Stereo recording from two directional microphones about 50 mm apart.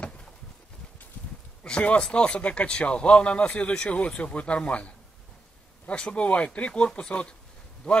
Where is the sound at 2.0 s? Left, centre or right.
Centre.